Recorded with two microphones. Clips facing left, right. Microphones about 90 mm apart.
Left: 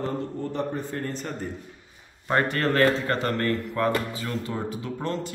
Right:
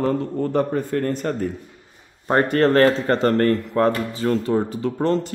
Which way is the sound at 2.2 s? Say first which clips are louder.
Right 7 dB; 35° right (ahead or behind).